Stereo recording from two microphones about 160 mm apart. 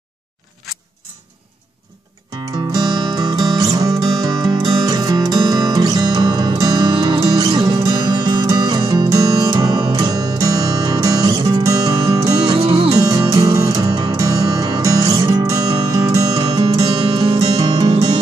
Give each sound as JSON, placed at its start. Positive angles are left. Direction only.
{"t": 2.7, "sound": "music", "side_deg": -25}
{"t": 12.5, "sound": "music", "side_deg": -35}
{"t": 12.9, "sound": "music", "side_deg": -25}